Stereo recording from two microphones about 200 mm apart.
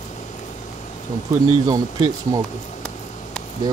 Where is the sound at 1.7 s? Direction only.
15° right (ahead or behind).